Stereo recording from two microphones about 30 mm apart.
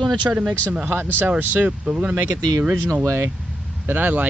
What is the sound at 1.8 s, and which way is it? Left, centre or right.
Speech, right.